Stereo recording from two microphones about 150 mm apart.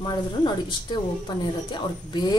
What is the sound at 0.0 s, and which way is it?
A woman's voice, 30° left (ahead or behind).